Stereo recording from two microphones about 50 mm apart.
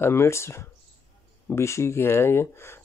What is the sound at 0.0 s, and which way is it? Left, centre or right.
Speech, left.